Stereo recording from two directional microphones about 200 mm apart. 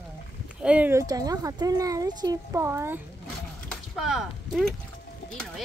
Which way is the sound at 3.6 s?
Centre (ahead or behind).